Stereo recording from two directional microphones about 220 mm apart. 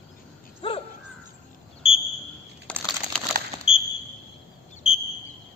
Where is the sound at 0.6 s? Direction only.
25° left (ahead or behind).